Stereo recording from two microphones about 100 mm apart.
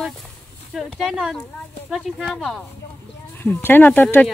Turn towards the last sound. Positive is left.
turn(degrees=15)  # may be behind; listen again after turning